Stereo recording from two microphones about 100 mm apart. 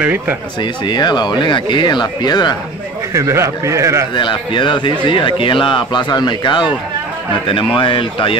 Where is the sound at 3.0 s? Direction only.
30° right (ahead or behind).